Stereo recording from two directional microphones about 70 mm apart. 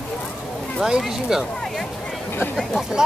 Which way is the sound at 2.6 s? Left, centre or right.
Centre.